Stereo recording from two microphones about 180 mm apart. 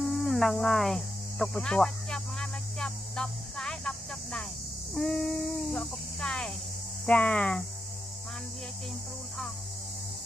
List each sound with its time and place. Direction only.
0.1 s cricket: centre (ahead or behind)
4.9 s speech: 5° left (ahead or behind)
7.1 s hum: 5° left (ahead or behind)